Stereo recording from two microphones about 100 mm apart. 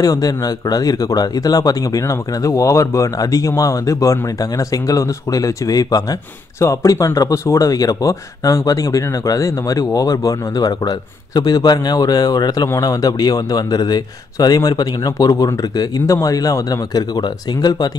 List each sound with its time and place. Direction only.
0.0 s speech: 40° left (ahead or behind)